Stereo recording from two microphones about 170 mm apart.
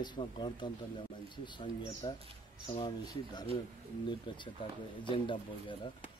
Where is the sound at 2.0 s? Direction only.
30° left (ahead or behind).